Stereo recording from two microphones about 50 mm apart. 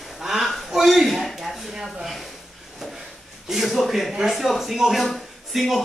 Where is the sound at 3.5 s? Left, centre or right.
Centre.